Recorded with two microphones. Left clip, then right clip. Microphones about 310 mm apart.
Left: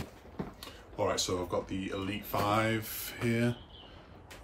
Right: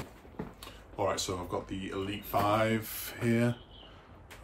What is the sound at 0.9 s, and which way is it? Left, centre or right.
Speech, centre.